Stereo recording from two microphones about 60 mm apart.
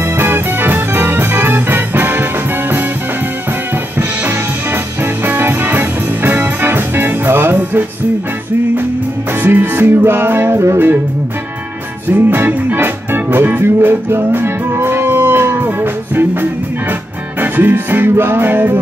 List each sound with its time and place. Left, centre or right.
0.0 s music: right
5.2 s music: right
9.4 s music: right
12.1 s music: right